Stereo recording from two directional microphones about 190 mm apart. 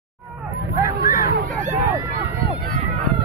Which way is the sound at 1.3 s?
45° right (ahead or behind).